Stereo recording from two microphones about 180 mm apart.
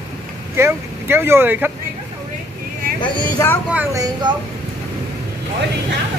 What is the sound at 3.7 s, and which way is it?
Speech, 10° right (ahead or behind).